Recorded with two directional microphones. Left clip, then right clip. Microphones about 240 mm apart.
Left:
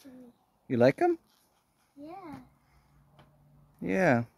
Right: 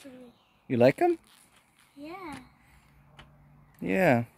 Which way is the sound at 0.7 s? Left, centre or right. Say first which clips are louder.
Right 2 dB; centre.